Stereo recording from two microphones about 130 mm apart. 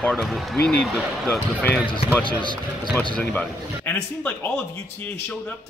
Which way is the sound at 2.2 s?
40° left (ahead or behind).